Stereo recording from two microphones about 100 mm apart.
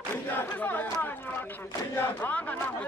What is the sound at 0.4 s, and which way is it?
Speech, 20° left (ahead or behind).